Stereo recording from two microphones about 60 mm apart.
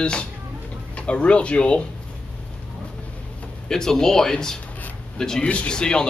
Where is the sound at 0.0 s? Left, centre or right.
Centre.